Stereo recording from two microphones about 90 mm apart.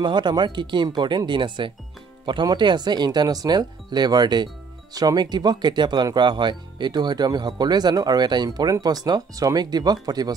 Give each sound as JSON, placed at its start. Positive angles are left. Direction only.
{"t": 0.0, "sound": "speech", "side_deg": -55}